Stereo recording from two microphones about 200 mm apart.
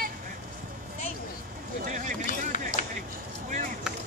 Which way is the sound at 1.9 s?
35° right (ahead or behind).